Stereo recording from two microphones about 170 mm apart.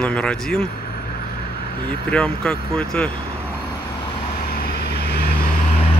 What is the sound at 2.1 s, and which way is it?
Speech, 5° left (ahead or behind).